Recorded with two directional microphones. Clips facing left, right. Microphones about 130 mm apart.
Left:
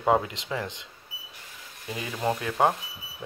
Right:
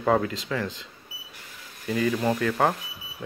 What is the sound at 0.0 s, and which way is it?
Speech, 15° left (ahead or behind).